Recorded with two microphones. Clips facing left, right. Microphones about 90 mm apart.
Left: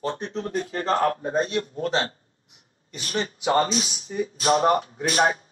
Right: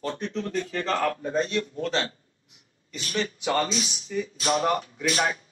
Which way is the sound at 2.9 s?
35° left (ahead or behind).